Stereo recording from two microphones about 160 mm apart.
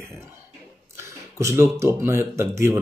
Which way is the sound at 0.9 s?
15° right (ahead or behind).